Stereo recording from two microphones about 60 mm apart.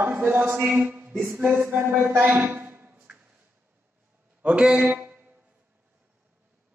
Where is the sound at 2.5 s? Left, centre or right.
Right.